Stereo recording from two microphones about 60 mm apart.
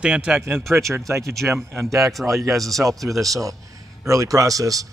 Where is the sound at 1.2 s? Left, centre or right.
Centre.